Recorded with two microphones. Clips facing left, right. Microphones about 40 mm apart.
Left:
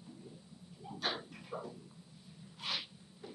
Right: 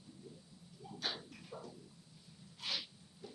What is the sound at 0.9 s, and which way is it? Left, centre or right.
Dog, left.